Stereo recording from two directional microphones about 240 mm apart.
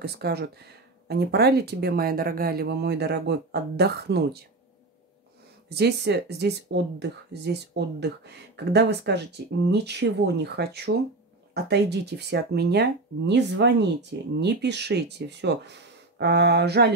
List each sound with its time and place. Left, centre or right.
0.0 s speech: right
5.8 s speech: right